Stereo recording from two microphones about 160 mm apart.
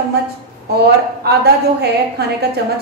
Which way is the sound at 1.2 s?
90° right.